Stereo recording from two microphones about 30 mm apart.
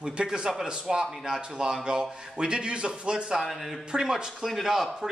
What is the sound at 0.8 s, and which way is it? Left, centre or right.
Speech, centre.